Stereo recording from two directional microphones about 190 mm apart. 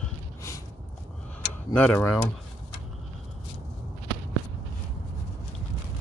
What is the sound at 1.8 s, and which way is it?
Speech, 10° left (ahead or behind).